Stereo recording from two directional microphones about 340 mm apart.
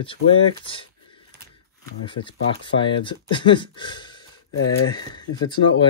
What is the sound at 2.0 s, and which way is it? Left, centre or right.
Speech, centre.